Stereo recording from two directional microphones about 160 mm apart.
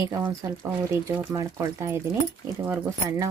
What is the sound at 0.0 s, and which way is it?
Speech, 20° right (ahead or behind).